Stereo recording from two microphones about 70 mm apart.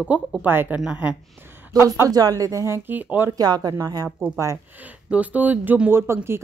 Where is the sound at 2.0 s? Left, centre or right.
Right.